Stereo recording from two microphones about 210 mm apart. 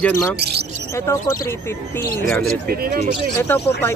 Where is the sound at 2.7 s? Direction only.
45° right (ahead or behind).